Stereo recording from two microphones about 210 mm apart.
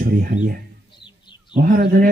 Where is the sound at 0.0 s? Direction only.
45° right (ahead or behind).